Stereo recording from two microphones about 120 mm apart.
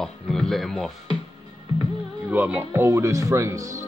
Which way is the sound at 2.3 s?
10° right (ahead or behind).